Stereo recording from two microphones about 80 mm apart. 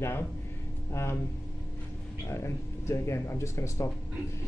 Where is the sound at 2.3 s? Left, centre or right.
Left.